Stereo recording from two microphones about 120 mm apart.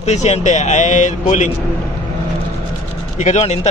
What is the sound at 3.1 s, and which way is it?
Speech, 70° left (ahead or behind).